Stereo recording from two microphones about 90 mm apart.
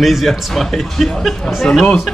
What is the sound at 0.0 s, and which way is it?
Speech, centre (ahead or behind).